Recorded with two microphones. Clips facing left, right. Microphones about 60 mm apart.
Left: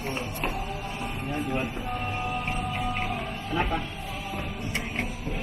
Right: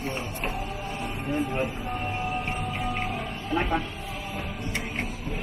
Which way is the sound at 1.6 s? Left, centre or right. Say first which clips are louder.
Right 2 dB; right.